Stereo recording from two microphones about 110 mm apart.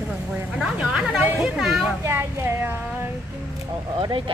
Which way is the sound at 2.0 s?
20° right (ahead or behind).